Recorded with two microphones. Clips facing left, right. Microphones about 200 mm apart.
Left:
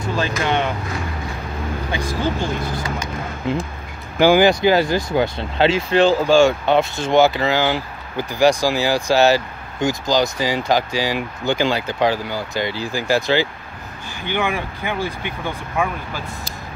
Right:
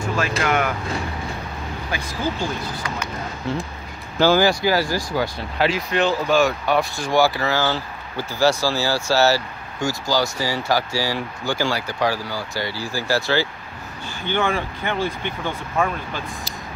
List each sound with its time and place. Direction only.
0.4 s speech: 25° left (ahead or behind)
3.4 s speech: 15° left (ahead or behind)